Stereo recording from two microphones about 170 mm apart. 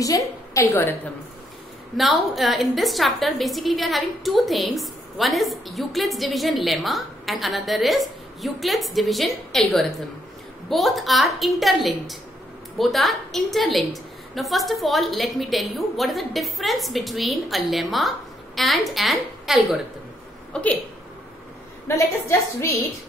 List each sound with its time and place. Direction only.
0.0 s a woman's voice: 20° left (ahead or behind)
2.0 s a woman's voice: centre (ahead or behind)
21.8 s a woman's voice: 15° left (ahead or behind)